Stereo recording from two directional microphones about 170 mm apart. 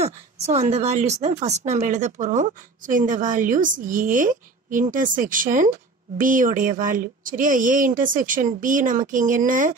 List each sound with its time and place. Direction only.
0.0 s speech: 40° right (ahead or behind)